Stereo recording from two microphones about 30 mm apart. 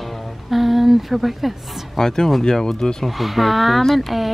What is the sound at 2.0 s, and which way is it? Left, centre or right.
Speech, centre.